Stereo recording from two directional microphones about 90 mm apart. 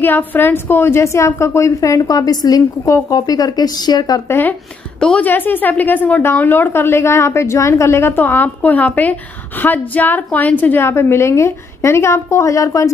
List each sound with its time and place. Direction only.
0.0 s a woman's voice: 20° left (ahead or behind); by 4.2 s 50° left (ahead or behind)
4.3 s a woman's voice: 25° left (ahead or behind)